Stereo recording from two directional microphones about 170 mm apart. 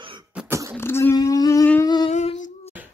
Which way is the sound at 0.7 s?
15° left (ahead or behind).